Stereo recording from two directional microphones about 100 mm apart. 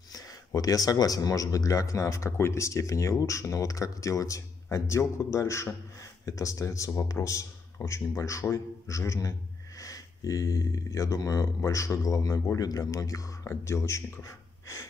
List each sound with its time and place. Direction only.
0.1 s speech: 35° left (ahead or behind)